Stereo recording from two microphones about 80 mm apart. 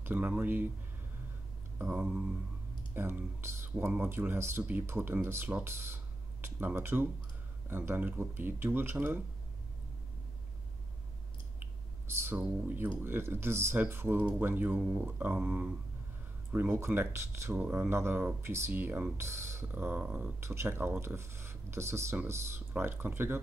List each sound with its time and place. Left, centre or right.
0.0 s speech: right
2.0 s a sound: centre
2.9 s speech: right
11.6 s a sound: right
12.4 s speech: right
19.7 s speech: right
20.3 s speech: right